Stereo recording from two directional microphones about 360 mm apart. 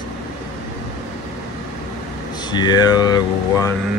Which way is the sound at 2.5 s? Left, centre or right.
Centre.